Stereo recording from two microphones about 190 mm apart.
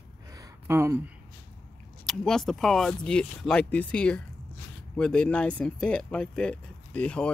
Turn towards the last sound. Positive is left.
turn(degrees=5)  # may be behind; listen again after turning